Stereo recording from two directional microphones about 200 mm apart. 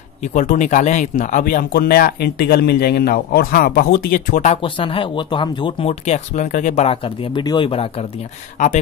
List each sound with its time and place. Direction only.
0.3 s speech: 40° left (ahead or behind)
4.6 s speech: 25° left (ahead or behind)
8.6 s speech: 40° left (ahead or behind)